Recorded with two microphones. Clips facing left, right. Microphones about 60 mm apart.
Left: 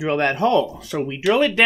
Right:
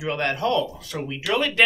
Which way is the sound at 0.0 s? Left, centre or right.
Left.